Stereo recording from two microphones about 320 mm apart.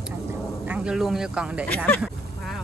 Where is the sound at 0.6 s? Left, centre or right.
Centre.